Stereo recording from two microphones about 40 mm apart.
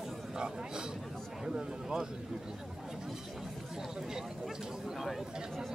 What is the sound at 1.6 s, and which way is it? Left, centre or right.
Speech, centre.